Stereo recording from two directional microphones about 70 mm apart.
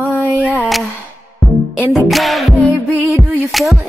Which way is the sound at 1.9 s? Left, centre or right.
Centre.